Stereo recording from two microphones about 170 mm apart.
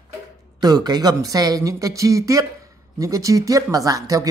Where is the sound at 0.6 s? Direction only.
25° right (ahead or behind).